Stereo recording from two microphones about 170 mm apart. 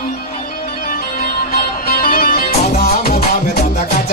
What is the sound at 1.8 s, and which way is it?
Music, 60° left (ahead or behind).